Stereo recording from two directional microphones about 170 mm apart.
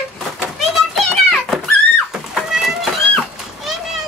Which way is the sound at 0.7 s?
Centre (ahead or behind).